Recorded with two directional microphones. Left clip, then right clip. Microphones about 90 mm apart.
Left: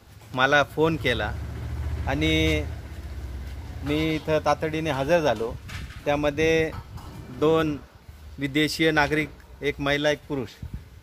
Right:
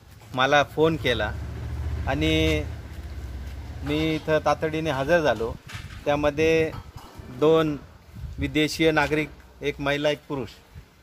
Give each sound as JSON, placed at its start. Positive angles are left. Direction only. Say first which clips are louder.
{"t": 0.3, "sound": "a man's voice", "louder": "even", "side_deg": 20}
{"t": 3.8, "sound": "a man's voice", "louder": "even", "side_deg": 10}
{"t": 8.4, "sound": "speech", "louder": "even", "side_deg": 20}